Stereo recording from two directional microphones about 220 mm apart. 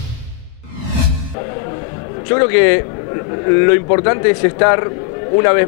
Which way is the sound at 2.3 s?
15° left (ahead or behind).